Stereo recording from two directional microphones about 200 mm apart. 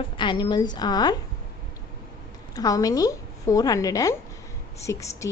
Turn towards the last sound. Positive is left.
turn(degrees=15)  # may be behind; listen again after turning